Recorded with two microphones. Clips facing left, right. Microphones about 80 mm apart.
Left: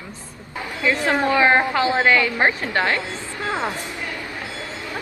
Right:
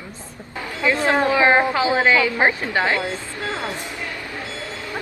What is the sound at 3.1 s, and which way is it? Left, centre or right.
Speech, left.